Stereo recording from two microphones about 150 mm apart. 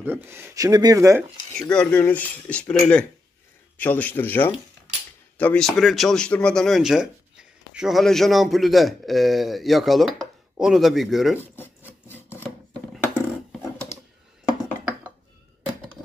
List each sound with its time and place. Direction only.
0.0 s speech: 15° right (ahead or behind)
1.6 s a man's voice: 5° left (ahead or behind)
11.4 s filing: 15° left (ahead or behind)
12.9 s a sound: centre (ahead or behind)